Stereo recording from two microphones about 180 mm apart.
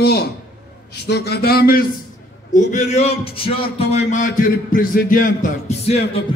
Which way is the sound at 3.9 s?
45° left (ahead or behind).